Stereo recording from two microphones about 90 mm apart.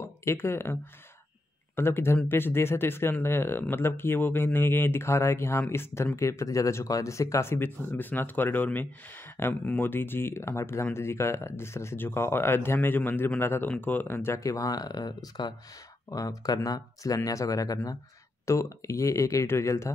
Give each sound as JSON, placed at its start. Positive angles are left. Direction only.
{"t": 0.0, "sound": "speech", "side_deg": 30}
{"t": 1.8, "sound": "speech", "side_deg": 25}
{"t": 16.1, "sound": "speech", "side_deg": 40}